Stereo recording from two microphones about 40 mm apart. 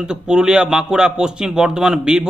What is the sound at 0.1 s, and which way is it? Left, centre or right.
A man's voice, right.